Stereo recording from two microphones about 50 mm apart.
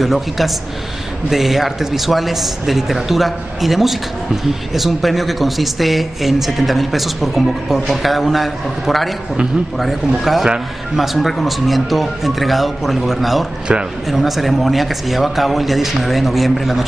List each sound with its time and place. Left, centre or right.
0.0 s speech: centre
13.7 s speech: right
14.0 s speech: centre